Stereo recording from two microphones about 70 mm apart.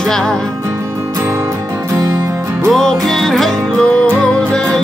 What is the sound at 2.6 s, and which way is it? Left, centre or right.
Music, centre.